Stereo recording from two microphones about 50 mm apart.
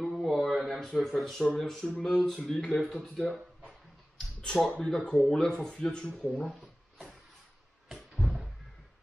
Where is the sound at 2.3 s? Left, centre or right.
Centre.